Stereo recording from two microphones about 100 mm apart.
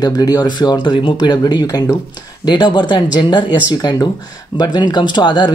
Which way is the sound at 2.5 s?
45° left (ahead or behind).